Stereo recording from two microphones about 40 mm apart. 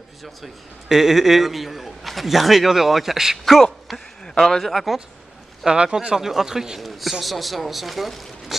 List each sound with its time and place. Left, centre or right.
0.2 s a man's voice: centre
3.8 s a sound: centre
4.5 s a man's voice: centre
5.7 s speech: centre
6.1 s speech: centre
6.8 s a man's voice: centre